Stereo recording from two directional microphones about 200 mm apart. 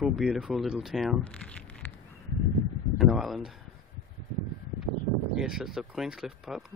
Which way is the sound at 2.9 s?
Centre (ahead or behind).